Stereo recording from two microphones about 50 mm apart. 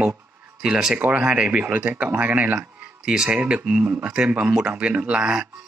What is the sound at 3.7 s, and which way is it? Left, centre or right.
Speech, right.